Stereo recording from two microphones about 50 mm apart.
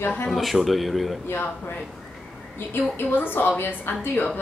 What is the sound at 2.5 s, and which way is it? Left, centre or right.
A woman's voice, left.